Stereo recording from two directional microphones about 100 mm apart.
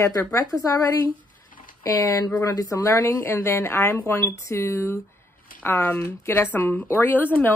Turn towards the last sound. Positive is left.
turn(degrees=20)  # may be behind; listen again after turning